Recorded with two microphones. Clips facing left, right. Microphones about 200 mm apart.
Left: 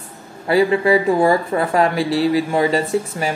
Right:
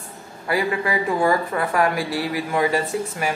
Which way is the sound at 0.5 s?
25° left (ahead or behind).